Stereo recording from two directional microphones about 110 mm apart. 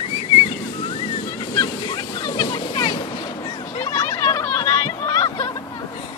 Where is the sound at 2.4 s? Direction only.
50° left (ahead or behind).